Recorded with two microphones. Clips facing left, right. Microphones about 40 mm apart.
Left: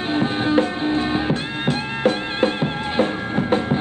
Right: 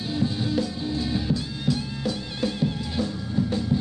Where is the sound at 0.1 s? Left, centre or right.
Left.